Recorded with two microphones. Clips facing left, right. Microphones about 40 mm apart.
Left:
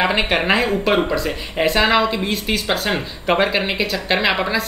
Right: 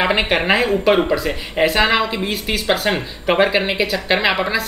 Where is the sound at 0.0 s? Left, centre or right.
Centre.